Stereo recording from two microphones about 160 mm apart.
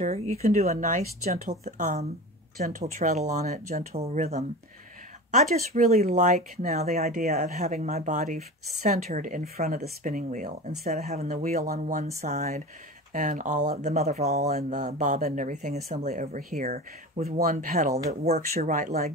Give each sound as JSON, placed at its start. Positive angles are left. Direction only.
{"t": 0.0, "sound": "speech", "side_deg": -45}
{"t": 6.9, "sound": "speech", "side_deg": -65}